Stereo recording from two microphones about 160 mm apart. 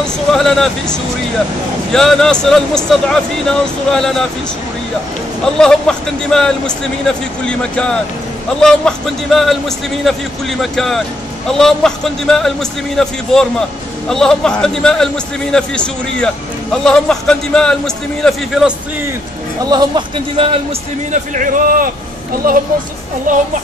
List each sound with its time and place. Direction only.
0.0 s speech: 5° left (ahead or behind)
5.4 s speech: 5° left (ahead or behind)
19.6 s speech: 25° right (ahead or behind)
21.1 s a man's voice: 55° right (ahead or behind)
23.3 s a man's voice: 55° right (ahead or behind)